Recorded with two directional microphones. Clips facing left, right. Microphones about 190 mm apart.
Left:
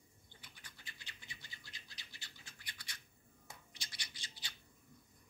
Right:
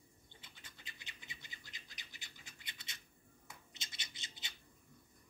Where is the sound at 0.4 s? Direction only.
25° right (ahead or behind).